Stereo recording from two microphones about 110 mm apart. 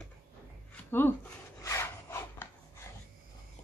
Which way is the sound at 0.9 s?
20° left (ahead or behind).